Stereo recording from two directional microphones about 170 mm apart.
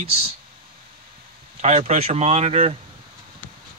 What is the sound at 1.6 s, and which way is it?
Speech, 40° right (ahead or behind).